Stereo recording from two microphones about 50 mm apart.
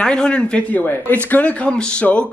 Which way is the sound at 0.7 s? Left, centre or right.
Left.